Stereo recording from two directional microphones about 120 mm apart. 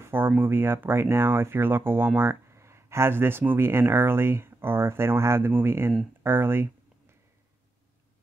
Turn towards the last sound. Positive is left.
turn(degrees=-20)  # may be behind; listen again after turning